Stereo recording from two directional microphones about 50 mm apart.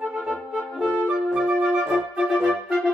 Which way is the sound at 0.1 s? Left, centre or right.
Right.